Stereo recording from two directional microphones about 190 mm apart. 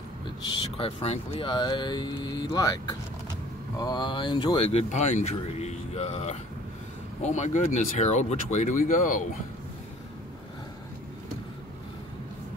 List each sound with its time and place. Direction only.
0.5 s speech: 30° left (ahead or behind); by 9.2 s 45° left (ahead or behind)